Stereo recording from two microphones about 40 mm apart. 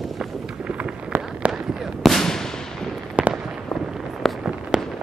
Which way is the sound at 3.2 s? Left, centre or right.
Right.